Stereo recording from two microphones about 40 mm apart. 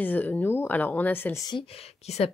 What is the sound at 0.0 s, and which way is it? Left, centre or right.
Speech, left.